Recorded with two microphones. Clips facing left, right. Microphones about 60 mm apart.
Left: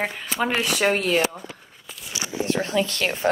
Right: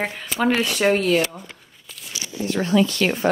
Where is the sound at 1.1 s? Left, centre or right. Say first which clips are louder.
Right 2 dB; left.